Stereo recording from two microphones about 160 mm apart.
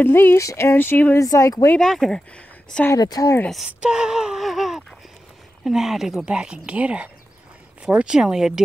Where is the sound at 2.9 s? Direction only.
25° left (ahead or behind).